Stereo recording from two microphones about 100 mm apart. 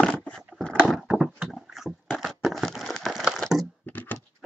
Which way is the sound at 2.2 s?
Centre (ahead or behind).